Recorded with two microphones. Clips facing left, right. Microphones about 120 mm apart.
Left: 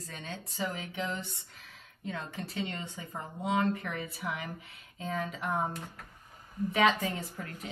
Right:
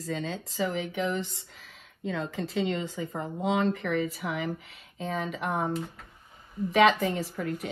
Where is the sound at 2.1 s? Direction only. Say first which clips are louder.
Right 7 dB; 90° right.